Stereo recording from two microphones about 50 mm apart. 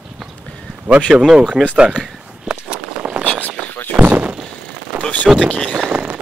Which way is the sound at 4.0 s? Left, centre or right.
Right.